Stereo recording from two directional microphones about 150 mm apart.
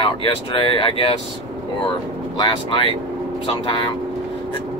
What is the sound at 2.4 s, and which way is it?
Speech, 35° left (ahead or behind).